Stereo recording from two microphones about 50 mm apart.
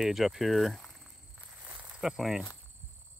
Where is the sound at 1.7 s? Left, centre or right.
Right.